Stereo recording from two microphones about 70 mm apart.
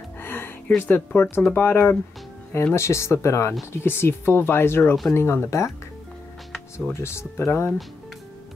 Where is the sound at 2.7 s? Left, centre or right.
Left.